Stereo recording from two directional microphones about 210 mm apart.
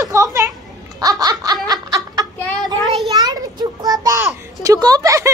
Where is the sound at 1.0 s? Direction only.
20° right (ahead or behind).